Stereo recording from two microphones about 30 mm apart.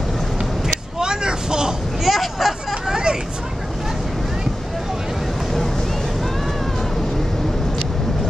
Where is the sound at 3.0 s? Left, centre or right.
Right.